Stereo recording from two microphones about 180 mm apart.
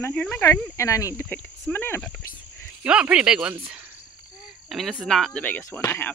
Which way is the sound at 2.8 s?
5° right (ahead or behind).